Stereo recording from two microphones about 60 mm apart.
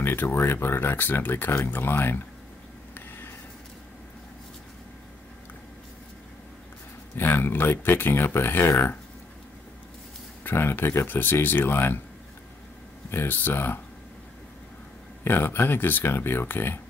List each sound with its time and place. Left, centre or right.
0.0 s speech: left
2.9 s a sound: left
7.2 s speech: left
10.4 s speech: left
13.1 s speech: left
15.2 s speech: left